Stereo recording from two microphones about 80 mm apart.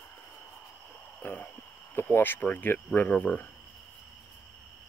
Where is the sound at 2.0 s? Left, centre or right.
Left.